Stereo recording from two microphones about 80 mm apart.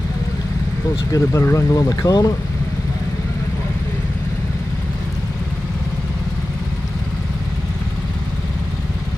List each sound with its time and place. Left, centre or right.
1.1 s speech: left